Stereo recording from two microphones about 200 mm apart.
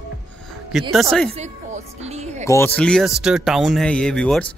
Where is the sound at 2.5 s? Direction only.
10° left (ahead or behind).